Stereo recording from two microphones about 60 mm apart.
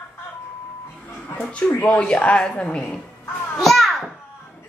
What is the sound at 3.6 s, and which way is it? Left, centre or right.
Children playing, centre.